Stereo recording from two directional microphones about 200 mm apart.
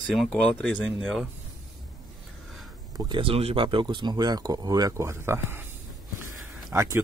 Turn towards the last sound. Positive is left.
turn(degrees=-15)  # may be behind; listen again after turning